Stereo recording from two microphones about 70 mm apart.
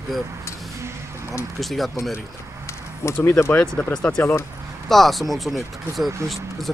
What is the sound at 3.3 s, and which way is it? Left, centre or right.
Speech, left.